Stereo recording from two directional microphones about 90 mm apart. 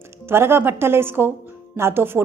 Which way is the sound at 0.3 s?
25° right (ahead or behind).